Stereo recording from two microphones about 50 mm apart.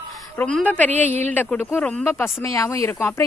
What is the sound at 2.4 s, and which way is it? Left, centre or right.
Speech, left.